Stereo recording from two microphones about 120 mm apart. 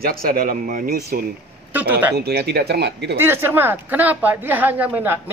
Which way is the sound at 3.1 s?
20° right (ahead or behind).